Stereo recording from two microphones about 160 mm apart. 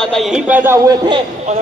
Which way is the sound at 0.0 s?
Centre (ahead or behind).